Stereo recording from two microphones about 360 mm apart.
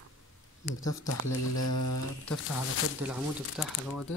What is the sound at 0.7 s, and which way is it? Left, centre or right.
Speech, left.